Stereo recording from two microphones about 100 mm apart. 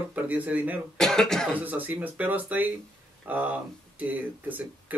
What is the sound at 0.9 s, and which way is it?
Cough, 5° left (ahead or behind).